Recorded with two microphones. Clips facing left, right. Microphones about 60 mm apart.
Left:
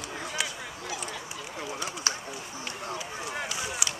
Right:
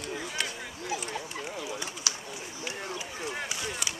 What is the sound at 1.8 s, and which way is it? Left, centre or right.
Bird, left.